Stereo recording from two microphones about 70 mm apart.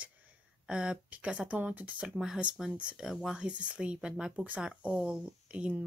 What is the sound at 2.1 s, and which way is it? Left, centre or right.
Speech, centre.